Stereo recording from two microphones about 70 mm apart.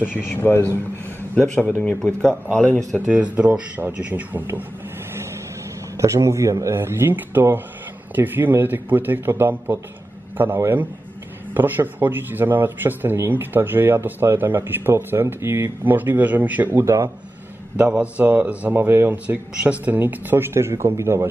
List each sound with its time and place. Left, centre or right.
0.0 s a man's voice: left
3.1 s speech: centre
5.9 s a man's voice: right
6.8 s a man's voice: right
16.7 s a man's voice: right
17.7 s a man's voice: centre; by 19.1 s right
19.2 s speech: centre; by 21.3 s right